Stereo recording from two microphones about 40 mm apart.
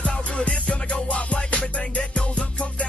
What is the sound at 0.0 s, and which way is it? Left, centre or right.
Music, left.